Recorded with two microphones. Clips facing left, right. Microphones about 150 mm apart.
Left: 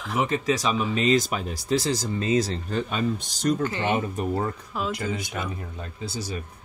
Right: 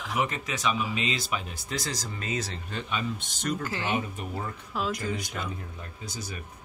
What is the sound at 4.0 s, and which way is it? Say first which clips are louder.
Speech: left 7 dB; 45° left (ahead or behind).